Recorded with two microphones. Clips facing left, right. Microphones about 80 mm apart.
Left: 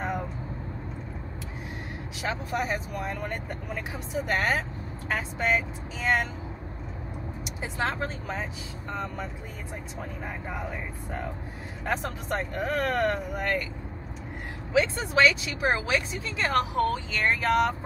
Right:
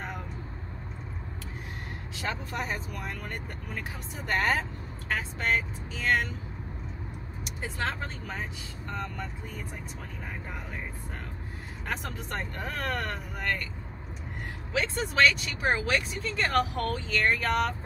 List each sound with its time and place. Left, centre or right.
2.2 s speech: centre
7.8 s speech: centre
11.8 s speech: centre
14.7 s speech: centre